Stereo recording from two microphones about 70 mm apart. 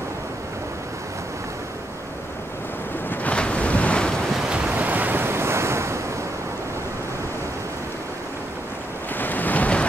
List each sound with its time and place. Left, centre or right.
3.1 s ocean: centre
4.3 s waves: centre; by 5.9 s right
9.1 s waves: left